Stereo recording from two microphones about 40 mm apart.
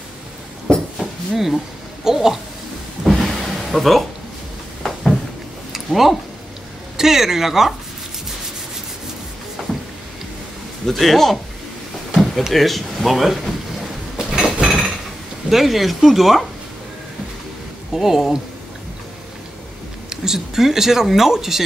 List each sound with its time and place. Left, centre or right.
0.9 s a sound: centre
2.0 s speech: centre
3.0 s a sound: centre
7.0 s speech: centre
10.9 s speech: centre
12.2 s drawer open or close: centre
12.5 s speech: centre
14.1 s a sound: centre
15.5 s speech: centre
17.9 s speech: centre
20.1 s speech: centre